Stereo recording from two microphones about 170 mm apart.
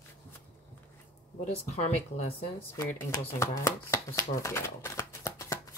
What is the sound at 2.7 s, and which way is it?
Speech, 15° left (ahead or behind).